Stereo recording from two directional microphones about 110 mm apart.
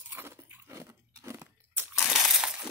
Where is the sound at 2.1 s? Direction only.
5° right (ahead or behind).